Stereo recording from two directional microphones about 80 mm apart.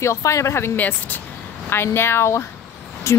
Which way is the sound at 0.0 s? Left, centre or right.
Left.